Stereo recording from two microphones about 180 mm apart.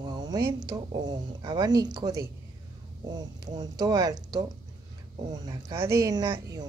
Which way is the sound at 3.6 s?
20° right (ahead or behind).